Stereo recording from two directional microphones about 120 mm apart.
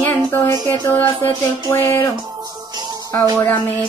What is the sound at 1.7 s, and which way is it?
Speech, 20° left (ahead or behind).